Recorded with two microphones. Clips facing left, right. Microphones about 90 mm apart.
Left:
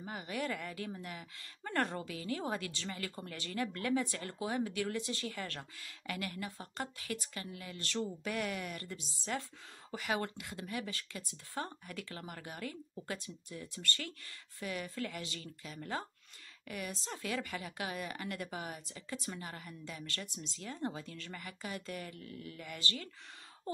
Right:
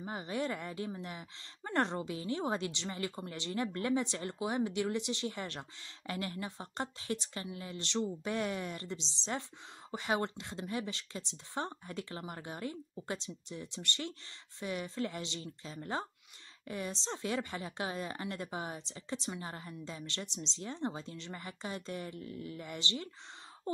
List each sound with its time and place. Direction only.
0.0 s a woman's voice: 25° right (ahead or behind)